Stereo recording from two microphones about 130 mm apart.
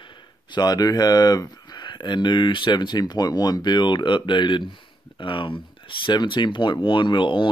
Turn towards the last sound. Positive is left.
turn(degrees=40)  # may be behind; listen again after turning